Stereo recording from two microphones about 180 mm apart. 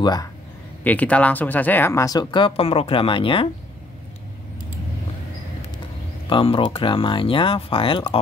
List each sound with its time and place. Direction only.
0.0 s speech: 20° left (ahead or behind)
0.8 s speech: 10° left (ahead or behind); by 3.4 s 30° left (ahead or behind)
6.2 s speech: 30° left (ahead or behind)